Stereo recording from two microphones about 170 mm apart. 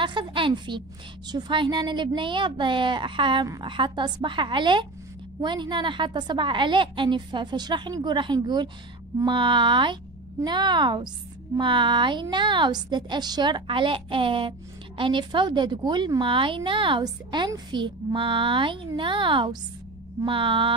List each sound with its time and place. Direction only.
0.0 s a woman's voice: 30° right (ahead or behind)
20.2 s mantra: 30° right (ahead or behind)